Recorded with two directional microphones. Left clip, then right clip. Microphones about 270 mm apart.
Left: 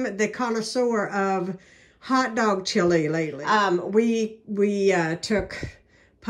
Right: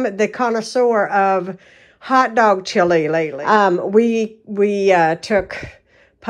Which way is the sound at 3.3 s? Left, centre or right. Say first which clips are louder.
Right 7 dB; right.